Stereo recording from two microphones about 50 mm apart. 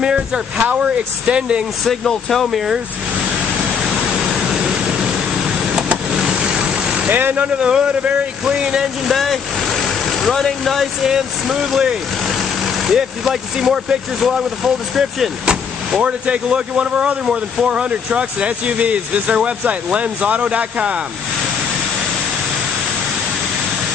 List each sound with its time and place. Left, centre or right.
0.0 s speech: centre
1.9 s speech: centre
4.5 s vehicle: centre
7.1 s speech: right
7.5 s speech: centre
9.0 s speech: centre
11.1 s speech: centre
16.0 s speech: right